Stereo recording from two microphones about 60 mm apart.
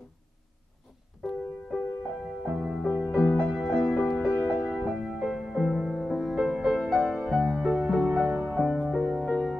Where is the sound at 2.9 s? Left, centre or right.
Left.